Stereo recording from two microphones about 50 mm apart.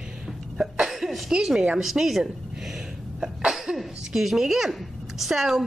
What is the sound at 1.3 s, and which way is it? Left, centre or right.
A woman's voice, centre.